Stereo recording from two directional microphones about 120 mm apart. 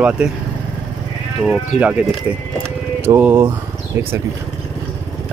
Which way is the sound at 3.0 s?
20° right (ahead or behind).